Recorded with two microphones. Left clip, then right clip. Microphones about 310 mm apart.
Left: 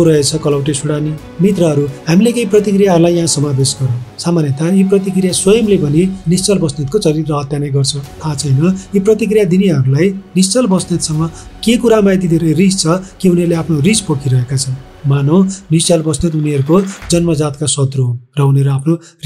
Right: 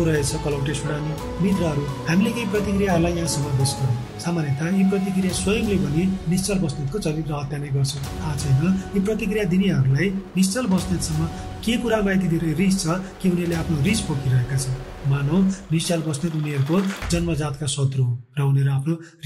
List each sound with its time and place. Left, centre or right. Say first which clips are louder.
0.0 s speech: left 12 dB; centre
15.0 s speech: left 11 dB; centre